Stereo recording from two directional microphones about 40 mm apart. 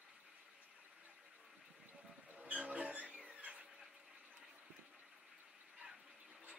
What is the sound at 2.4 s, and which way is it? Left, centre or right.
Music, right.